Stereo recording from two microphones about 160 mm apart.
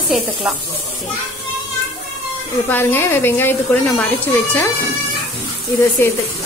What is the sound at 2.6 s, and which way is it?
A woman's voice, 15° left (ahead or behind).